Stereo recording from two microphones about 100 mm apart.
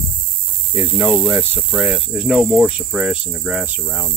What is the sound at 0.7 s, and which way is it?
Speech, 10° right (ahead or behind).